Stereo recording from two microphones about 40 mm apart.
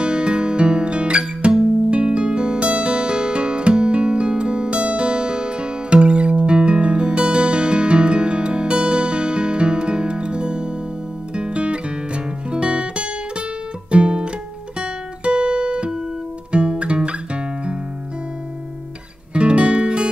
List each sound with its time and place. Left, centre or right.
0.0 s music: right
14.8 s guitar: right
19.3 s music: right